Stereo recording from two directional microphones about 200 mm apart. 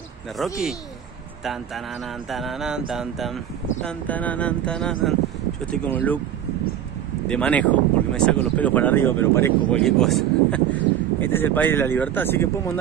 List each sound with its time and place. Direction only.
0.4 s speech: centre (ahead or behind)
2.2 s speech: centre (ahead or behind)
7.2 s speech: 5° left (ahead or behind)